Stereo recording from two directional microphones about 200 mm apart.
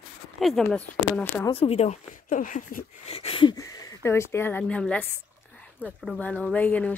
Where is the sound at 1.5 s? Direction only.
30° left (ahead or behind).